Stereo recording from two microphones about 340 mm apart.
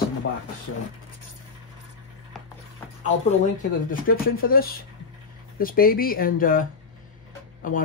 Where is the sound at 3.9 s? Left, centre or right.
Left.